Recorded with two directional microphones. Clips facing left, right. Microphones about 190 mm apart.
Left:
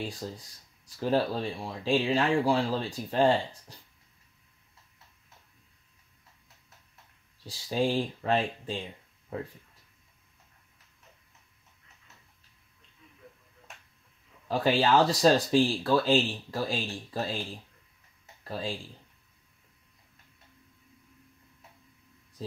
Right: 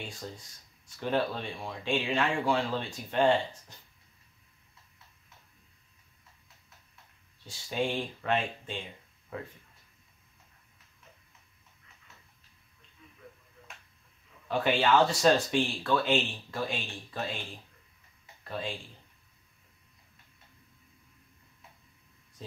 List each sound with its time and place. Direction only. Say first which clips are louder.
0.8 s speech: left 3 dB; 35° left (ahead or behind)
7.4 s speech: left 4 dB; 35° left (ahead or behind)
14.5 s speech: left 2 dB; 35° left (ahead or behind)
18.5 s speech: left 2 dB; 35° left (ahead or behind)